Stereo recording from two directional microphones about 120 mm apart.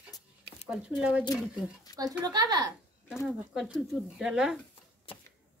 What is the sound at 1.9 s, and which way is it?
Speech, 30° right (ahead or behind).